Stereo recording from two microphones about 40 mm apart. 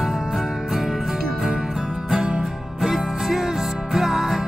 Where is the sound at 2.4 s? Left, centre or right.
Centre.